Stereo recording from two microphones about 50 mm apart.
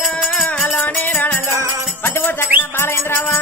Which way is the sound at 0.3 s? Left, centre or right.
Left.